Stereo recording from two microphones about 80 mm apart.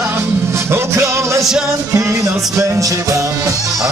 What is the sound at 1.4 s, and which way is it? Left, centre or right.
Music, centre.